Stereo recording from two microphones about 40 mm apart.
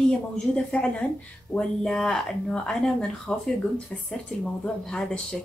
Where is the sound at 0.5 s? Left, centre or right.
Left.